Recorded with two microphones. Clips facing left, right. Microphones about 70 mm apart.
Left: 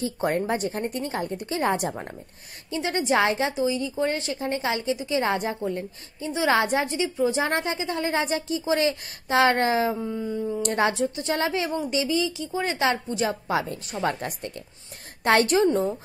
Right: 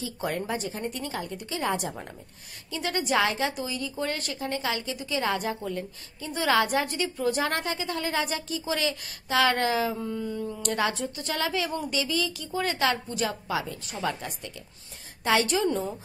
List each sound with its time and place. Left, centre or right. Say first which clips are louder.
0.0 s a woman's voice: left 6 dB; left
2.7 s a woman's voice: left 3 dB; left
7.0 s a woman's voice: left 3 dB; centre
7.4 s a woman's voice: left 3 dB; left
9.9 s a woman's voice: left 3 dB; centre
10.7 s a woman's voice: left 3 dB; left
13.2 s a woman's voice: left 4 dB; left
15.2 s a woman's voice: left 5 dB; left